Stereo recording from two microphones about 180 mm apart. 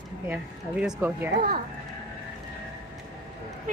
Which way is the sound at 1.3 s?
60° right (ahead or behind).